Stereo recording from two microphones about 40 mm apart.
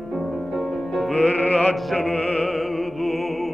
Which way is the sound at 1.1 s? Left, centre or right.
Left.